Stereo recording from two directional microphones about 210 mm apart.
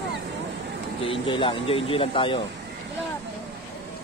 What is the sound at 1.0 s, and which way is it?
Speech, 25° left (ahead or behind).